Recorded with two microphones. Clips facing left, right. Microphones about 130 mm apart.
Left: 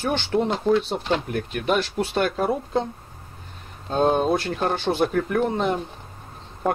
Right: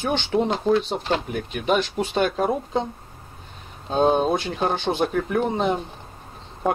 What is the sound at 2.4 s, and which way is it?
Speech, 10° right (ahead or behind).